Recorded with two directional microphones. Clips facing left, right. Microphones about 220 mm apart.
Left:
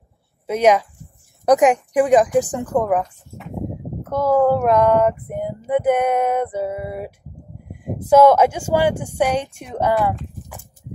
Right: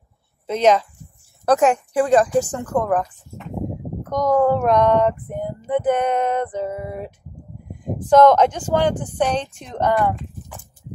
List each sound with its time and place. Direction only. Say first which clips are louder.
0.5 s speech: left 1 dB; 10° left (ahead or behind)
4.0 s speech: left 1 dB; 5° left (ahead or behind)